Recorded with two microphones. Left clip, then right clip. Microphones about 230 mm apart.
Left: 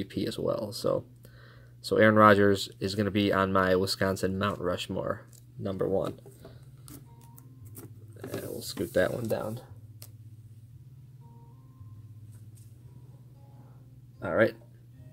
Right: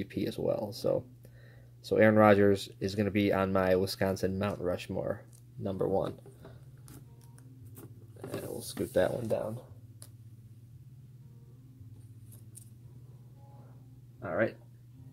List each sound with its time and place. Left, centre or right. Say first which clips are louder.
0.0 s speech: left 2 dB; centre
7.7 s a sound: left 3 dB; centre
14.2 s speech: left 6 dB; left